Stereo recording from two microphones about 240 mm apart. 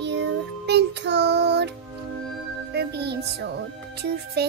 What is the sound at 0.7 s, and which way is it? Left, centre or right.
Child singing, right.